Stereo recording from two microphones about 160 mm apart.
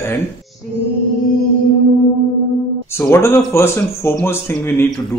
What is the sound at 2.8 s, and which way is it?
Speech, 15° left (ahead or behind).